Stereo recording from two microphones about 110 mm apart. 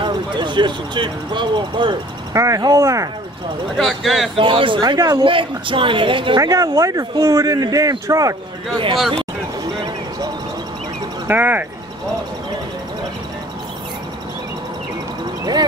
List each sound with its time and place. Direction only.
0.0 s speech: 45° right (ahead or behind)
2.3 s speech: 30° right (ahead or behind)
3.7 s speech: centre (ahead or behind)
4.4 s speech: 50° right (ahead or behind)
6.4 s speech: 30° right (ahead or behind)
11.2 s speech: 15° right (ahead or behind)